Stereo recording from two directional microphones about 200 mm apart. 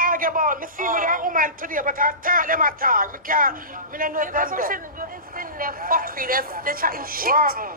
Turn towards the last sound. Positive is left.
turn(degrees=-45)  # may be behind; listen again after turning